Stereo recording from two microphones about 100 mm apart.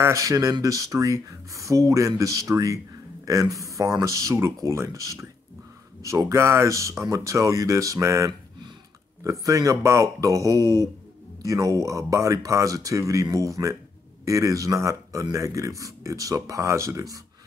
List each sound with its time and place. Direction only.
0.0 s speech: 30° right (ahead or behind)